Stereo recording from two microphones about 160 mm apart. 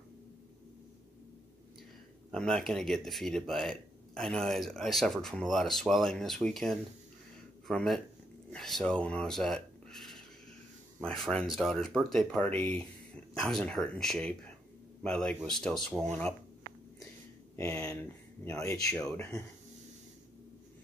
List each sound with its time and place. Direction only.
2.3 s speech: 5° left (ahead or behind)
18.4 s speech: 15° left (ahead or behind)